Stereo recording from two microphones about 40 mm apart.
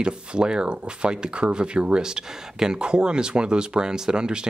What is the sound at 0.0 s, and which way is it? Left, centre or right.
Speech, right.